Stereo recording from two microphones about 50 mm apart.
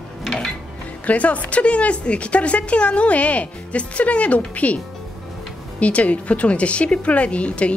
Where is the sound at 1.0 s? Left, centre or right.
Left.